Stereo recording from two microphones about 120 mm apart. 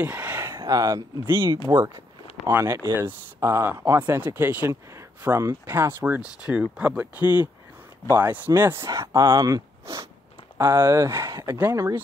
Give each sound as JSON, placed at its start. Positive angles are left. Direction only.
{"t": 0.0, "sound": "a sound", "side_deg": -15}
{"t": 0.7, "sound": "speech", "side_deg": -30}
{"t": 1.2, "sound": "speech", "side_deg": -20}
{"t": 2.5, "sound": "speech", "side_deg": -25}